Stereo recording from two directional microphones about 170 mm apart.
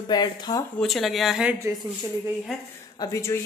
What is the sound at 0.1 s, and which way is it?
Speech, 25° left (ahead or behind).